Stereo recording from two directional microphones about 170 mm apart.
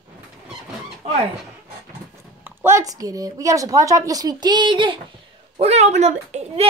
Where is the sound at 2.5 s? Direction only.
15° right (ahead or behind).